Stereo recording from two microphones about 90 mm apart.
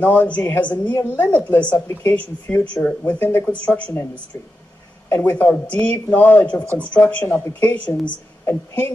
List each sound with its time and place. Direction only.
0.0 s a woman's voice: 20° left (ahead or behind)
7.3 s speech: 25° left (ahead or behind)
7.7 s a woman's voice: 15° left (ahead or behind)
8.5 s speech: 25° left (ahead or behind)